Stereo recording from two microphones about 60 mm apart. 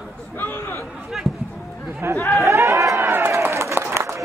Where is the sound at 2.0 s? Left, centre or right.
Right.